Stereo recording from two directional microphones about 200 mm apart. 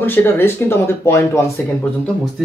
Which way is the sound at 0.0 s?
10° left (ahead or behind).